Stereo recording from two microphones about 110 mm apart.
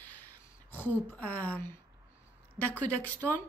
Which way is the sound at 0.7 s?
15° left (ahead or behind).